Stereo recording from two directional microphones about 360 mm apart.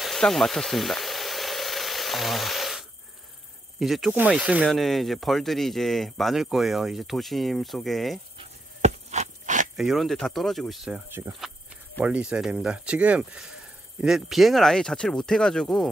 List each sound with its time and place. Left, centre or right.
0.0 s frying: centre
3.8 s speech: centre
8.4 s a sound: centre
9.8 s speech: centre